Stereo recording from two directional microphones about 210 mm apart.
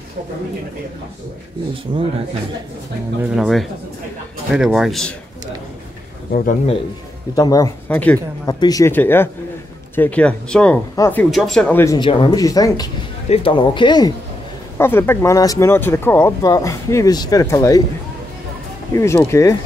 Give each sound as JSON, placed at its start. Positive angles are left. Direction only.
{"t": 1.9, "sound": "speech", "side_deg": -25}
{"t": 3.3, "sound": "a man's voice", "side_deg": 0}
{"t": 6.3, "sound": "speech", "side_deg": 40}
{"t": 7.3, "sound": "speech", "side_deg": 15}
{"t": 8.5, "sound": "speech", "side_deg": 20}
{"t": 14.8, "sound": "speech", "side_deg": 10}
{"t": 18.9, "sound": "speech", "side_deg": 15}